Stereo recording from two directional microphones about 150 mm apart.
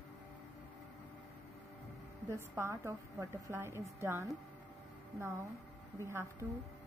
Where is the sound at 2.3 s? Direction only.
15° right (ahead or behind).